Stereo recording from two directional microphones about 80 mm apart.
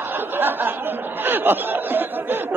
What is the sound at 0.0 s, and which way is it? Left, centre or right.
Speech, right.